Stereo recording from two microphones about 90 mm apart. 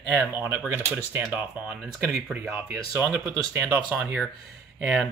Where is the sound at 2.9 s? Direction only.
35° right (ahead or behind).